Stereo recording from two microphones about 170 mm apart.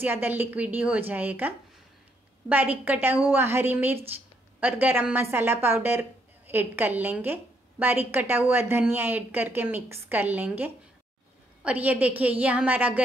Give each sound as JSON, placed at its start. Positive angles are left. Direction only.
{"t": 0.0, "sound": "a woman's voice", "side_deg": -10}
{"t": 2.5, "sound": "a woman's voice", "side_deg": -10}